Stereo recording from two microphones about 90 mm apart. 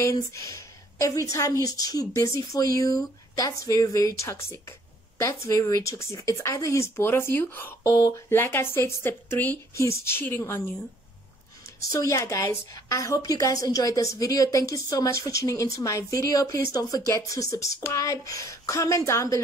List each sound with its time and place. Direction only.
0.0 s speech: 35° left (ahead or behind)
8.3 s speech: 25° left (ahead or behind)
11.9 s speech: 35° left (ahead or behind)